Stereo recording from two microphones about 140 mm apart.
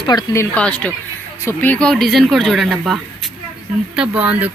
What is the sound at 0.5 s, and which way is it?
Speech, 10° left (ahead or behind).